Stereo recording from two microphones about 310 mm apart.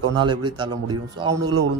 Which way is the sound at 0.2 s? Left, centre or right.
Centre.